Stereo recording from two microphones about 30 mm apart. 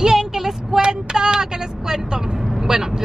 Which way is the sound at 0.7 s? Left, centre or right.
Right.